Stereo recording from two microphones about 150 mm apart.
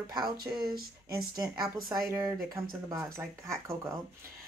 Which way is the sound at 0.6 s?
90° right.